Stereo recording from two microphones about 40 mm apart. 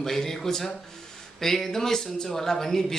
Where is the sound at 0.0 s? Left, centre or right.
Centre.